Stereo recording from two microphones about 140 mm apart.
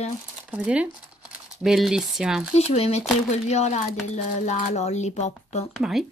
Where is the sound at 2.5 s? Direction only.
50° left (ahead or behind).